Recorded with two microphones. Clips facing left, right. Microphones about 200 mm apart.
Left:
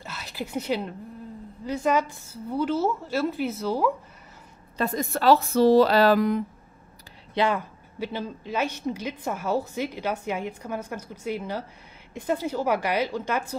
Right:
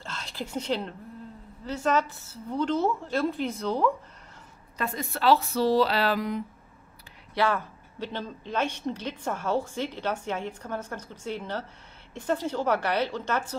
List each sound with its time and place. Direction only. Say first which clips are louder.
0.0 s a sound: left 2 dB; 5° left (ahead or behind)
1.6 s a woman's voice: left 2 dB; 10° left (ahead or behind)
4.7 s speech: left 5 dB; 40° left (ahead or behind)
7.3 s a woman's voice: left 2 dB; 15° left (ahead or behind)